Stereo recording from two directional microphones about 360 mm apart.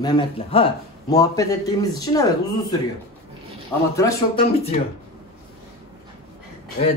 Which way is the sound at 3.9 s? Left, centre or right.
Centre.